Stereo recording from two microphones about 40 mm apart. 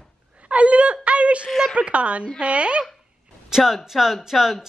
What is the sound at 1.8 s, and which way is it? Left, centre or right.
A woman's voice, right.